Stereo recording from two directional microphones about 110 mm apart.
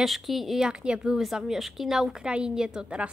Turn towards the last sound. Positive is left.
turn(degrees=-10)  # may be behind; listen again after turning